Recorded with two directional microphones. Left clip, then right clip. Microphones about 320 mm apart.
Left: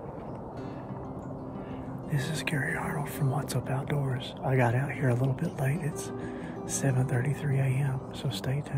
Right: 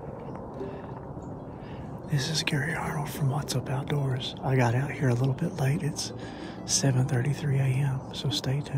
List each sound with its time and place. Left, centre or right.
2.0 s speech: centre